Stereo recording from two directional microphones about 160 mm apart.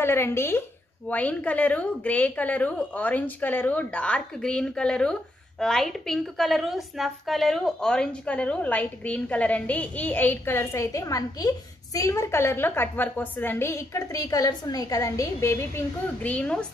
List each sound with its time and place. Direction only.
0.0 s a woman's voice: 15° left (ahead or behind)